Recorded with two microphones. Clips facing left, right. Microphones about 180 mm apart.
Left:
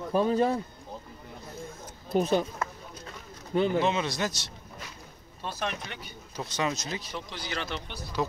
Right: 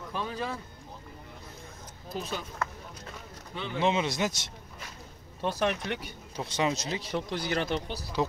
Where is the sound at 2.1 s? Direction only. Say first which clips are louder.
Left 11 dB; 50° left (ahead or behind).